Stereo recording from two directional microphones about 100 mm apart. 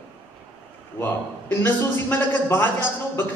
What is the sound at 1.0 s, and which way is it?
A man's voice, 20° left (ahead or behind).